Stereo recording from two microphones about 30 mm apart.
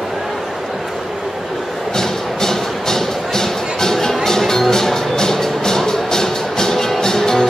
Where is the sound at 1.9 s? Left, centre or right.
Centre.